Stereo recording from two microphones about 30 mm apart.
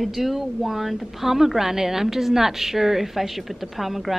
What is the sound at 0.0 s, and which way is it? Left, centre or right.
A woman's voice, centre.